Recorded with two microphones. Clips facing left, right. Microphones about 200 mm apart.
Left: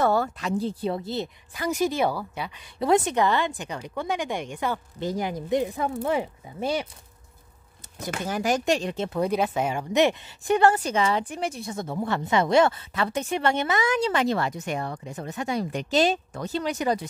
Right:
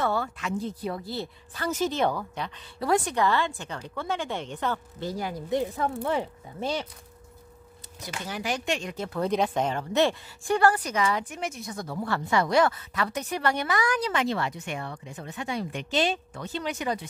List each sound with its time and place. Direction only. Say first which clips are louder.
0.0 s speech: left 5 dB; 40° left (ahead or behind); by 2.6 s 10° left (ahead or behind)
2.8 s a woman's voice: left 3 dB; 20° left (ahead or behind)
8.0 s speech: left 6 dB; 50° left (ahead or behind); by 9.2 s 25° left (ahead or behind)
9.2 s speech: even; 5° left (ahead or behind); by 14.2 s 25° left (ahead or behind)
14.2 s speech: left 3 dB; 40° left (ahead or behind)